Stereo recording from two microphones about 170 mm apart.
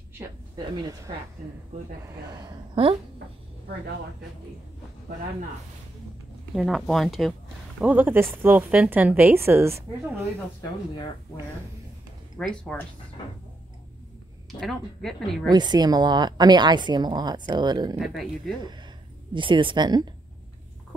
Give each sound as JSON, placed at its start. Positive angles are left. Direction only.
{"t": 2.4, "sound": "a woman's voice", "side_deg": -30}
{"t": 6.5, "sound": "a woman's voice", "side_deg": 0}
{"t": 7.8, "sound": "speech", "side_deg": -10}
{"t": 12.4, "sound": "a woman's voice", "side_deg": 5}
{"t": 14.5, "sound": "a woman's voice", "side_deg": 0}
{"t": 15.5, "sound": "a woman's voice", "side_deg": -25}
{"t": 17.9, "sound": "a woman's voice", "side_deg": 0}
{"t": 19.3, "sound": "a woman's voice", "side_deg": -30}